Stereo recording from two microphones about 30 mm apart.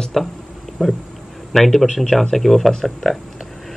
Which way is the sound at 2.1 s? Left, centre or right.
Centre.